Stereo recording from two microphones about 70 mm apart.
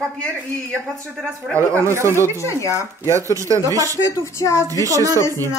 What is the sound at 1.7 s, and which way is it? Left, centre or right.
Speech, right.